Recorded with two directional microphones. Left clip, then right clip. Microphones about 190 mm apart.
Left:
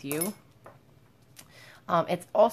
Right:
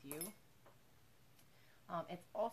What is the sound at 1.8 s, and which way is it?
Speech, 40° left (ahead or behind).